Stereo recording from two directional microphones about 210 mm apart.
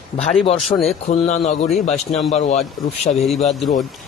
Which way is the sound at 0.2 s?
30° left (ahead or behind).